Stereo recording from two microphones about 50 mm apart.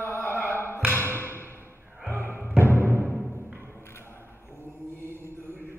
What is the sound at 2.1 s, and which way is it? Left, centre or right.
Music, right.